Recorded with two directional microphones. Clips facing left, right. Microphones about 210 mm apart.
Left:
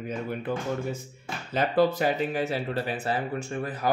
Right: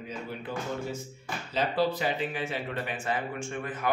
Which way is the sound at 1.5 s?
50° left (ahead or behind).